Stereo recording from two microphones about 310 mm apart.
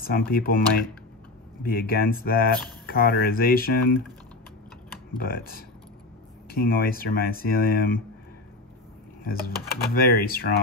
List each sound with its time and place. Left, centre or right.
0.0 s speech: left
5.1 s speech: left
9.2 s speech: left